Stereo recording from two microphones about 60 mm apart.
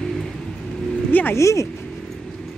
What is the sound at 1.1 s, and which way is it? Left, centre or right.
Vehicle, left.